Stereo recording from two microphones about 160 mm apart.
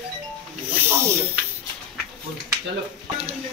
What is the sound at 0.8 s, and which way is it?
Speech, 15° right (ahead or behind).